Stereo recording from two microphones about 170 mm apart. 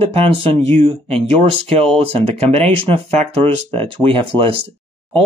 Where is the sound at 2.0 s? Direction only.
40° right (ahead or behind).